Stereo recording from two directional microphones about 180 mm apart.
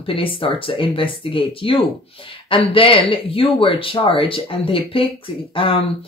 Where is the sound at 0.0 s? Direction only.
30° left (ahead or behind).